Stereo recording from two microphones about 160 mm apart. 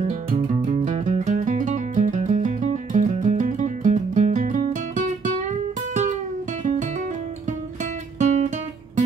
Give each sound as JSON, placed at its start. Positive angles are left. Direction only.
{"t": 0.1, "sound": "music", "side_deg": -50}
{"t": 6.6, "sound": "music", "side_deg": -50}